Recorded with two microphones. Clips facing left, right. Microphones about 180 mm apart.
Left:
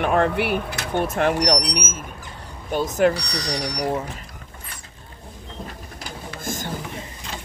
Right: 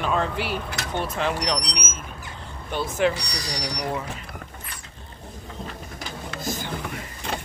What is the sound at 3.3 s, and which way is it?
Speech, 55° left (ahead or behind).